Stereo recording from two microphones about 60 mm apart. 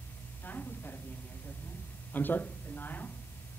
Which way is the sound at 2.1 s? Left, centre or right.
Left.